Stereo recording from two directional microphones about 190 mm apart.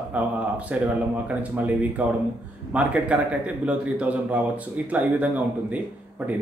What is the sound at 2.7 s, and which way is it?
A man's voice, 5° right (ahead or behind).